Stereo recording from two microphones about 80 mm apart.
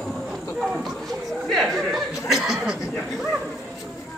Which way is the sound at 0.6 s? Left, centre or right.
Centre.